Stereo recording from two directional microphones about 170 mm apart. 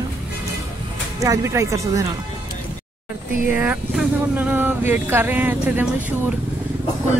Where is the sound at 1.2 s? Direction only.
15° right (ahead or behind).